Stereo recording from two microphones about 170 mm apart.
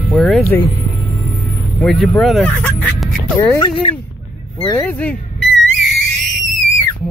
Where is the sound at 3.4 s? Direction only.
20° left (ahead or behind).